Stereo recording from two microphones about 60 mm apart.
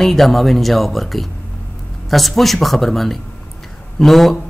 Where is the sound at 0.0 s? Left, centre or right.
Centre.